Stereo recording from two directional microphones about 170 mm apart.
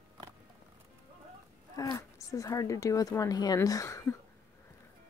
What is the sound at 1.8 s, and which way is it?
Speech, 20° left (ahead or behind).